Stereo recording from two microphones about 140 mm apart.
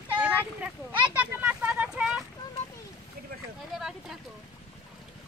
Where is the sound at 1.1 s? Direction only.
10° right (ahead or behind).